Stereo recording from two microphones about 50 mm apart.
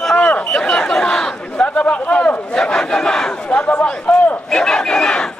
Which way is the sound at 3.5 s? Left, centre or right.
Left.